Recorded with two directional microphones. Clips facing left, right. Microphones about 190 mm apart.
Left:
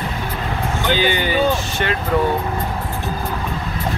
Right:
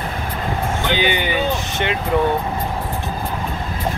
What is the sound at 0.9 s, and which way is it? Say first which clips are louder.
Speech: left 2 dB; 20° right (ahead or behind).